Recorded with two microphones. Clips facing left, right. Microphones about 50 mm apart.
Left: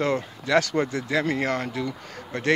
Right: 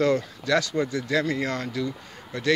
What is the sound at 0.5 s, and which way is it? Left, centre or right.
Speech, left.